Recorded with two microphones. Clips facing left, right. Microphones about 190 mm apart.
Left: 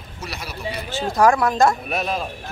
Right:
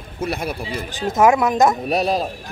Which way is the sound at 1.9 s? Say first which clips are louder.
Right 5 dB; 35° right (ahead or behind).